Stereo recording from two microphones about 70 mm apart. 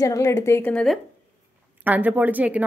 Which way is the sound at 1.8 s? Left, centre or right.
Right.